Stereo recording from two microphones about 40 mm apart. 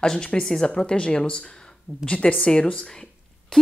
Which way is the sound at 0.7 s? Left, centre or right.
Left.